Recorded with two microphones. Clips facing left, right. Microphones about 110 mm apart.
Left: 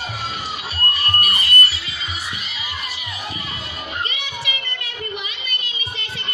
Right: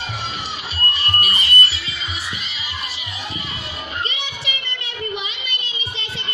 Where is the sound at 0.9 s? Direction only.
30° right (ahead or behind).